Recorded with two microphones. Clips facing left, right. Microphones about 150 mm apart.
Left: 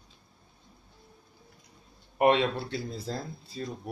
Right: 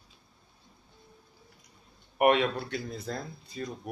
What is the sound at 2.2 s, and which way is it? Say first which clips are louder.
Speech: even; 25° left (ahead or behind).